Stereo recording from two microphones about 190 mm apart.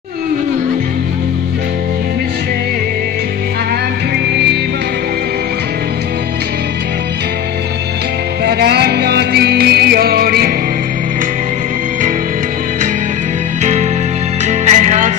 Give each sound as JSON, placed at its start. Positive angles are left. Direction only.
{"t": 4.3, "sound": "music", "side_deg": -60}
{"t": 8.5, "sound": "music", "side_deg": -60}
{"t": 13.6, "sound": "music", "side_deg": -40}